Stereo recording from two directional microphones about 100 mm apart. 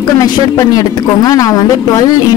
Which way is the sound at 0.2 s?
35° left (ahead or behind).